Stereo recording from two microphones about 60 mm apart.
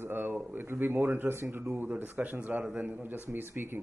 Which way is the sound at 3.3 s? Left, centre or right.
Right.